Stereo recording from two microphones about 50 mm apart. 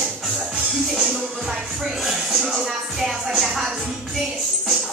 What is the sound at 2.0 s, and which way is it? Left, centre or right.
Speech, centre.